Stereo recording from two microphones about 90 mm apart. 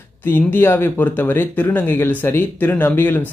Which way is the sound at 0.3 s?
25° left (ahead or behind).